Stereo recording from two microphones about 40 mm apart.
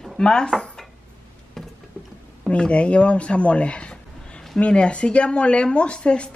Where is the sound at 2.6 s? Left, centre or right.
Left.